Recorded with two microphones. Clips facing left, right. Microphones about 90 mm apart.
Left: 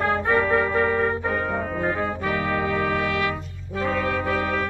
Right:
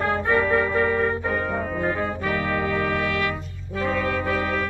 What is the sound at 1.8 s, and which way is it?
Brass instrument, 25° left (ahead or behind).